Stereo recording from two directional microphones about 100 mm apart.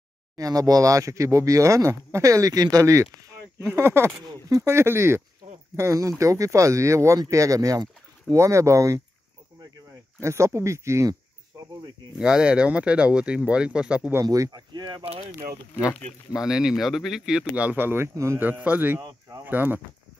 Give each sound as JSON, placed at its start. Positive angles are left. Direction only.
{"t": 0.4, "sound": "speech", "side_deg": -40}
{"t": 4.3, "sound": "speech", "side_deg": -35}
{"t": 10.2, "sound": "speech", "side_deg": -30}
{"t": 12.2, "sound": "speech", "side_deg": -5}
{"t": 14.2, "sound": "speech", "side_deg": -40}
{"t": 16.3, "sound": "speech", "side_deg": -5}
{"t": 18.4, "sound": "speech", "side_deg": -15}
{"t": 18.9, "sound": "speech", "side_deg": -35}
{"t": 19.4, "sound": "speech", "side_deg": -20}